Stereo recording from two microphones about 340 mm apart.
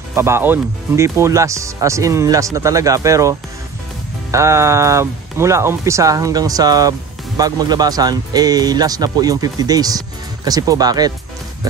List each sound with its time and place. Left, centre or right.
0.1 s speech: centre